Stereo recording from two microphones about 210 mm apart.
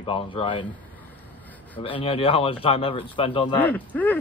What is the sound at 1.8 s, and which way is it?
Speech, 25° left (ahead or behind).